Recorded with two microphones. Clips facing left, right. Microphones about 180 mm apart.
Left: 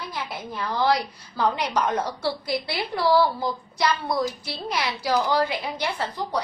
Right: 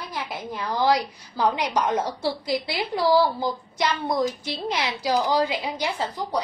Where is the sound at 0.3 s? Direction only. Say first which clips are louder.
Right 2 dB; 15° right (ahead or behind).